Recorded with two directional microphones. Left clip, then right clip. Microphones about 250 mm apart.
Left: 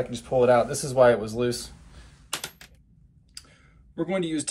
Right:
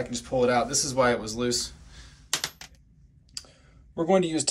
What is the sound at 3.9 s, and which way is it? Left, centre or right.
Speech, centre.